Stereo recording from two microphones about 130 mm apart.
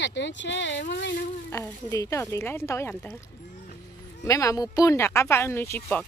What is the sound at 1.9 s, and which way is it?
Speech, 25° left (ahead or behind).